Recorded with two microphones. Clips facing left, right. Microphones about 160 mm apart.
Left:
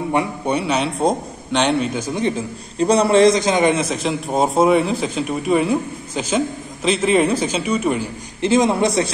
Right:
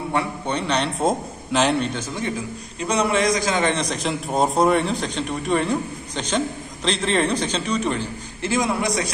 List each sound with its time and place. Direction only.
0.1 s a man's voice: 10° left (ahead or behind)
2.0 s a man's voice: 15° left (ahead or behind)
2.8 s a man's voice: 35° left (ahead or behind); by 3.7 s 20° left (ahead or behind)
3.7 s a man's voice: 5° left (ahead or behind); by 9.1 s 25° left (ahead or behind)